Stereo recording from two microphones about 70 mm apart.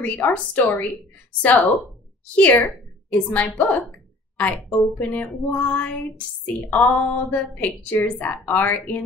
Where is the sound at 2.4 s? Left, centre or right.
Left.